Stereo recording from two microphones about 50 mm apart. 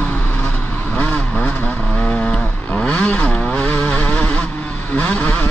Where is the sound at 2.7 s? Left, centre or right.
Left.